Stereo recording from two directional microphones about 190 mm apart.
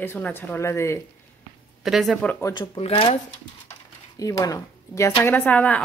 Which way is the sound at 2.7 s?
30° left (ahead or behind).